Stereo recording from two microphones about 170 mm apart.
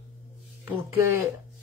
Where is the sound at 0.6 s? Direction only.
15° right (ahead or behind).